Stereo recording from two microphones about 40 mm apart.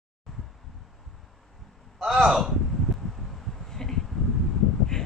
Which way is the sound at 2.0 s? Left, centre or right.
Centre.